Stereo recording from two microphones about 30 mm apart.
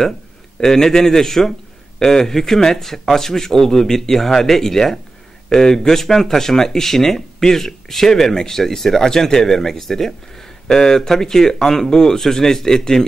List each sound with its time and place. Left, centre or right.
0.6 s a man's voice: centre